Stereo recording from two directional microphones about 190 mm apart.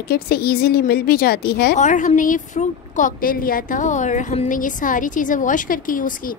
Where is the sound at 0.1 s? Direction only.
55° left (ahead or behind).